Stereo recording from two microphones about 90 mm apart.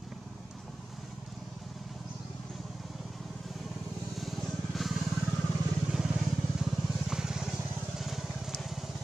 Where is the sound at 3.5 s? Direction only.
Centre (ahead or behind).